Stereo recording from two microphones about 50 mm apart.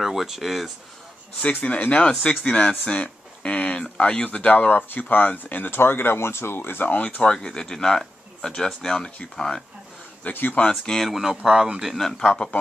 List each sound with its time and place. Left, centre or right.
0.0 s speech: centre
1.4 s speech: left
6.9 s speech: left
10.3 s speech: left
10.7 s speech: centre
11.1 s speech: centre
12.0 s speech: centre